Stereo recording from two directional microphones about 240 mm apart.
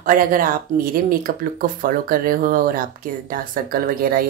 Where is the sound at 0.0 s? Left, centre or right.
Right.